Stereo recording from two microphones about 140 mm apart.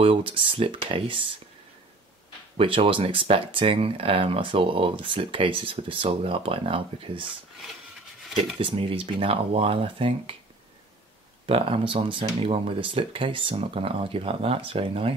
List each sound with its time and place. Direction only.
0.0 s speech: 40° right (ahead or behind)
2.5 s speech: 40° right (ahead or behind)
8.5 s speech: 40° right (ahead or behind)
11.4 s speech: 40° right (ahead or behind)